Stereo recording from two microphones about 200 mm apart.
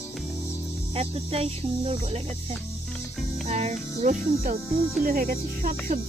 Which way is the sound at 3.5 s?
35° right (ahead or behind).